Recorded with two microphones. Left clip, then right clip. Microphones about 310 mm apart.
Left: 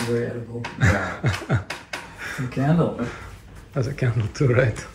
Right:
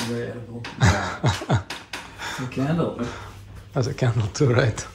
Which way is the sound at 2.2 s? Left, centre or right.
Centre.